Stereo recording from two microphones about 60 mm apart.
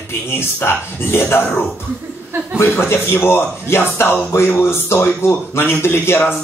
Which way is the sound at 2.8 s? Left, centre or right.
Left.